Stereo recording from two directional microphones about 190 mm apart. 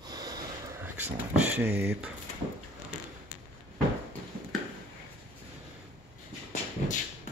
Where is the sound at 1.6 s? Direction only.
60° right (ahead or behind).